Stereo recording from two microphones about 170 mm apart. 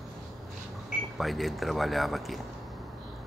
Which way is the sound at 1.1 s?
Centre (ahead or behind).